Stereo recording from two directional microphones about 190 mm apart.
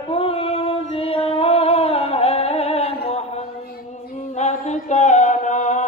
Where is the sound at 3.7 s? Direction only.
40° left (ahead or behind).